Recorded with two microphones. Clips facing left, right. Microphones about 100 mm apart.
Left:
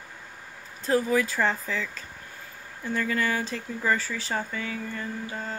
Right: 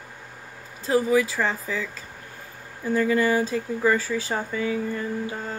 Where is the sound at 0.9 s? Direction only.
10° right (ahead or behind).